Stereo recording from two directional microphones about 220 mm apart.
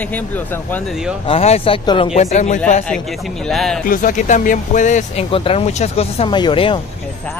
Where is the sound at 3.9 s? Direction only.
35° left (ahead or behind).